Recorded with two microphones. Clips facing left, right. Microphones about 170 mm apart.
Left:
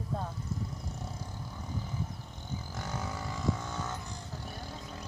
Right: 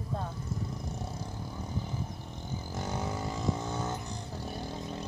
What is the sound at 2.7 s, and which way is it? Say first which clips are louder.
Vehicle: right 5 dB; 20° right (ahead or behind).